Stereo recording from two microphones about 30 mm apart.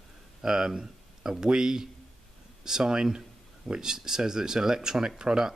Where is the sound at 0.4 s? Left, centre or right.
Centre.